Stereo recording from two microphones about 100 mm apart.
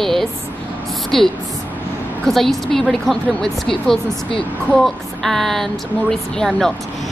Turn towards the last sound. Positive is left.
turn(degrees=5)  # may be behind; listen again after turning